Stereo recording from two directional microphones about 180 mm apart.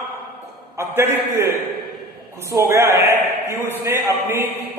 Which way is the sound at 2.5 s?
15° right (ahead or behind).